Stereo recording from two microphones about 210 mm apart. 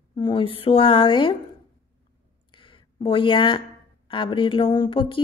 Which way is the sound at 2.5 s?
25° left (ahead or behind).